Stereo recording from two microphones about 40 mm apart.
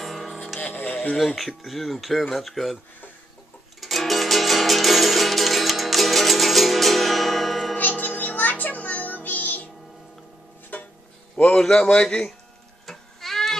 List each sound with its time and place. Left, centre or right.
0.0 s music: centre
0.6 s music: left
1.1 s speech: centre
3.8 s music: centre
7.7 s music: left
10.7 s music: left
11.3 s a man's voice: left
11.6 s a man's voice: centre
12.8 s tick-tock: centre